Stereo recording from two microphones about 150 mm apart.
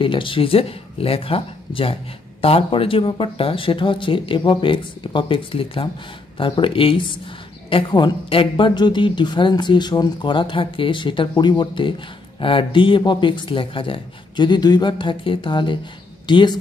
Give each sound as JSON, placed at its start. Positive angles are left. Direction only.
{"t": 0.0, "sound": "a woman's voice", "side_deg": 35}